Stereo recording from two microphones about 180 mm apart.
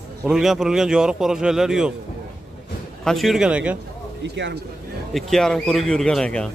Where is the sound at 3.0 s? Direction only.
Centre (ahead or behind).